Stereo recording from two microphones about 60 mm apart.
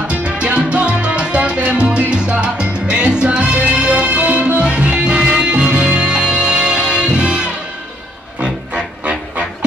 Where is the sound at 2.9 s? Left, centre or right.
Centre.